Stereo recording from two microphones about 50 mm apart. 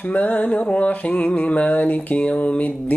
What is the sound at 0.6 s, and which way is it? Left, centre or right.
Mantra, left.